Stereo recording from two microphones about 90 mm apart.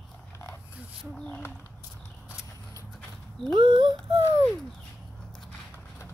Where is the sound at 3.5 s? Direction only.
60° right (ahead or behind).